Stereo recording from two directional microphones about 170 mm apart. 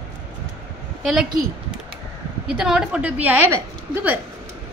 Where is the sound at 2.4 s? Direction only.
5° right (ahead or behind).